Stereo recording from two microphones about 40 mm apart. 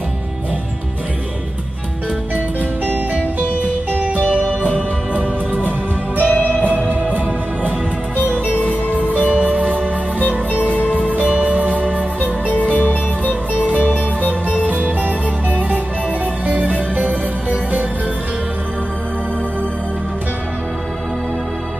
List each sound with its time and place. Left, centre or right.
4.6 s music: left
5.6 s music: right
6.2 s music: left
8.5 s music: left
9.3 s music: right
10.7 s music: left
11.2 s music: right
12.5 s music: left
16.4 s music: right